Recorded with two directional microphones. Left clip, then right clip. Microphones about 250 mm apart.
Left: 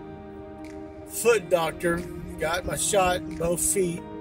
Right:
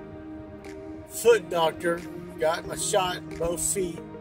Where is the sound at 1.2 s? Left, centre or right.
Left.